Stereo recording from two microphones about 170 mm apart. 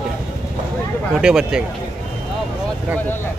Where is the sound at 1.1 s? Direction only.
5° right (ahead or behind).